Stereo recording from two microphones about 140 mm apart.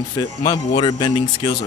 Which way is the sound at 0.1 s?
30° left (ahead or behind).